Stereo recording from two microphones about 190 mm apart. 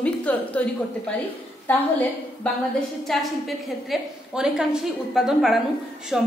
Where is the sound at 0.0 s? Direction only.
5° left (ahead or behind).